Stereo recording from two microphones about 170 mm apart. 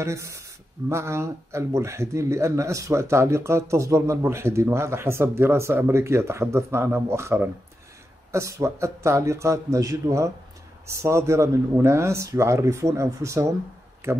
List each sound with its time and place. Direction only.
0.0 s speech: 15° right (ahead or behind)